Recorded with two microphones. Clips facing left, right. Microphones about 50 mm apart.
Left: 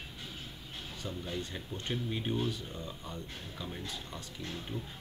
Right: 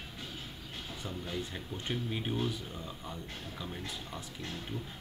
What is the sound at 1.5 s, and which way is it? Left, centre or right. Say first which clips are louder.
Speech: even; centre.